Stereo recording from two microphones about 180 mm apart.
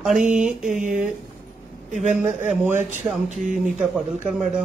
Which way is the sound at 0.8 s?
45° right (ahead or behind).